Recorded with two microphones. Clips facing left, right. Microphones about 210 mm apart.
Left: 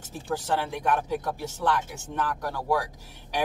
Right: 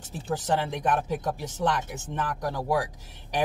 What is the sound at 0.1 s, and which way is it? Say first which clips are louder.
Speech: right 1 dB; 15° right (ahead or behind).